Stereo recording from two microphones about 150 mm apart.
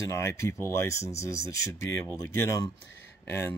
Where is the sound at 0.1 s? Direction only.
15° left (ahead or behind).